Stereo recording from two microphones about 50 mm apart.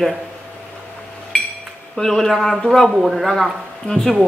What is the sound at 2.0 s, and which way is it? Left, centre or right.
A woman's voice, centre.